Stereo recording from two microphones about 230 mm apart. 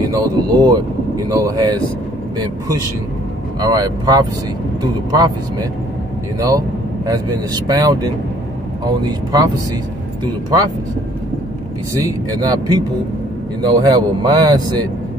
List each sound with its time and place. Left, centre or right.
0.0 s speech: centre
7.1 s speech: centre
12.1 s speech: centre